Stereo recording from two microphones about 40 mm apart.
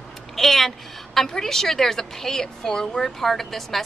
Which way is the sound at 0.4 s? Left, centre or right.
Centre.